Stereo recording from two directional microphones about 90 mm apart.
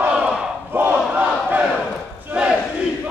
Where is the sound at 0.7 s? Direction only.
20° right (ahead or behind).